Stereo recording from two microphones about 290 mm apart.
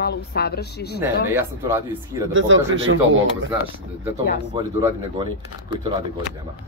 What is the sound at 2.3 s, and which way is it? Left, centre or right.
Speech, right.